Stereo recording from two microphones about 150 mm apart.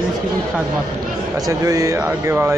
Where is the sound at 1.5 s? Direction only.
20° right (ahead or behind).